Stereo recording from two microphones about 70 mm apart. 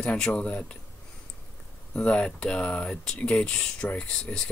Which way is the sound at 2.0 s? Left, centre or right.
Centre.